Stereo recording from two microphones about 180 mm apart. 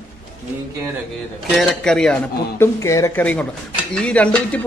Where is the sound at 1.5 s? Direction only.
5° left (ahead or behind).